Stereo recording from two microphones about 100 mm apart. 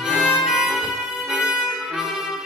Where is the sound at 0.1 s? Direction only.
5° right (ahead or behind).